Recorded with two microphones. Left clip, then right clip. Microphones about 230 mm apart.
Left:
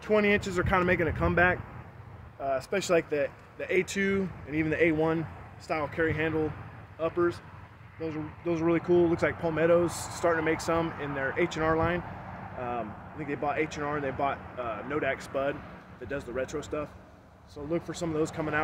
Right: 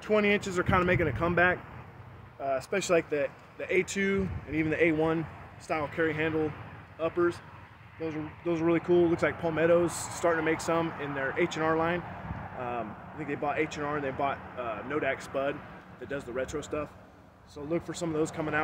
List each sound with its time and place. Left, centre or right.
0.0 s speech: centre